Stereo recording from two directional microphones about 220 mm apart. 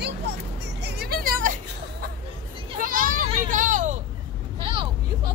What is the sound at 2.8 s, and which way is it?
Children playing, 40° right (ahead or behind).